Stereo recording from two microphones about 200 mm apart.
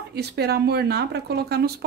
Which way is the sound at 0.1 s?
55° right (ahead or behind).